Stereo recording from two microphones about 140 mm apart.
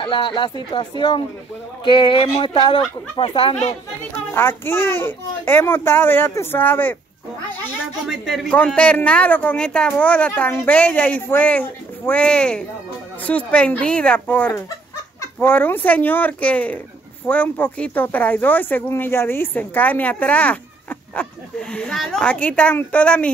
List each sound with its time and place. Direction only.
0.0 s speech: 35° left (ahead or behind)
4.3 s speech: 15° left (ahead or behind)
8.1 s speech: centre (ahead or behind)